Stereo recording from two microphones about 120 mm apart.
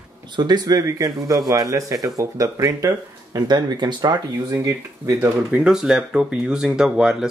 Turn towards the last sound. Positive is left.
turn(degrees=-5)  # may be behind; listen again after turning